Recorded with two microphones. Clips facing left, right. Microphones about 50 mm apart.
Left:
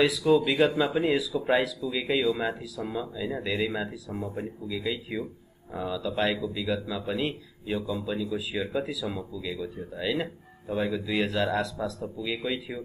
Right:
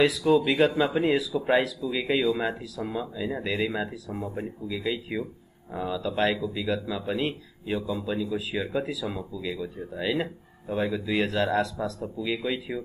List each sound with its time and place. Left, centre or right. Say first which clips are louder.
0.3 s speech: even; centre